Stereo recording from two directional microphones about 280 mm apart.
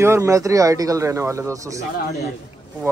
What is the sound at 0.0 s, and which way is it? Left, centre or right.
Speech, centre.